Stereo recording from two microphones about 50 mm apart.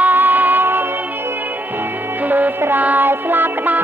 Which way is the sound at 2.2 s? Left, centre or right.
Right.